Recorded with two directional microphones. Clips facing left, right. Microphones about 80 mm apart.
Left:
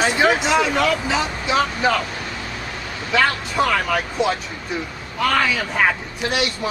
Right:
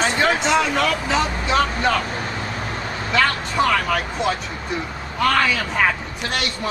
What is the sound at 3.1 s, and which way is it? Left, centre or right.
Speech, centre.